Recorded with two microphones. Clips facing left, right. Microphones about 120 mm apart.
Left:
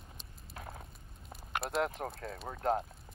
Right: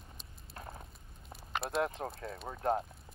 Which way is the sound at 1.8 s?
20° right (ahead or behind).